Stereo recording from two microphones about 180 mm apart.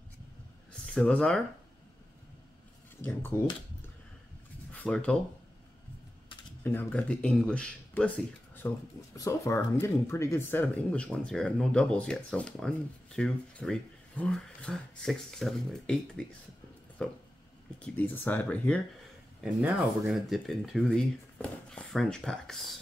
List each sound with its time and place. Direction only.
0.8 s speech: 5° left (ahead or behind)
3.0 s speech: 10° left (ahead or behind)
4.7 s speech: 5° left (ahead or behind)
6.6 s speech: 10° left (ahead or behind)